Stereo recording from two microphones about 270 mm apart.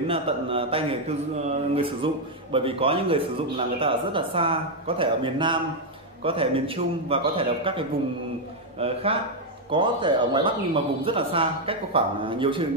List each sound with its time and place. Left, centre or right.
0.1 s speech: centre